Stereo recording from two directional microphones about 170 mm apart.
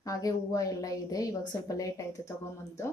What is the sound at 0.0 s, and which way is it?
A woman's voice, 20° left (ahead or behind).